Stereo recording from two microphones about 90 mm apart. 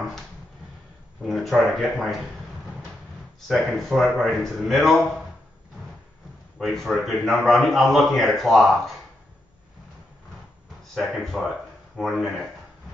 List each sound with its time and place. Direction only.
1.2 s speech: centre (ahead or behind)
3.3 s speech: centre (ahead or behind)
6.6 s speech: 5° left (ahead or behind)
11.0 s speech: centre (ahead or behind)